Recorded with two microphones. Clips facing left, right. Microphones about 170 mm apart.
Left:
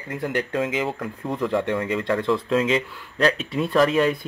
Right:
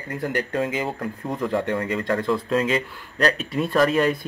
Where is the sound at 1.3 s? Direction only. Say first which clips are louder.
Left 1 dB; centre (ahead or behind).